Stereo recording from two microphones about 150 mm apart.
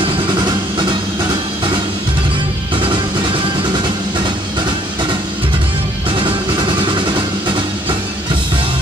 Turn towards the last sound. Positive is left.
turn(degrees=-30)  # may be behind; listen again after turning